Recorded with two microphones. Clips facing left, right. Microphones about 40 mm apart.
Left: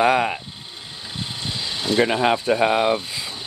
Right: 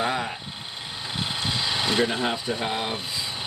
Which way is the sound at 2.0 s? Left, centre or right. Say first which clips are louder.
Left 6 dB; left.